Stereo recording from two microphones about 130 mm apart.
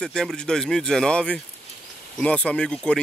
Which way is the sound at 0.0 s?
5° left (ahead or behind).